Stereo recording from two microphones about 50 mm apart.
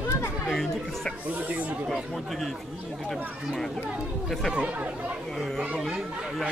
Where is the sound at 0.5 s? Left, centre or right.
Centre.